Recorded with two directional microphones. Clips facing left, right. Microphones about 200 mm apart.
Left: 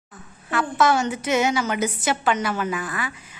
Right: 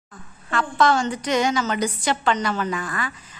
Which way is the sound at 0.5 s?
5° left (ahead or behind).